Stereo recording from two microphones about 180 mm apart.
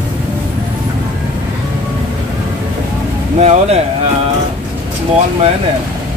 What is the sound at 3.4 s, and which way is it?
Speech, 35° right (ahead or behind).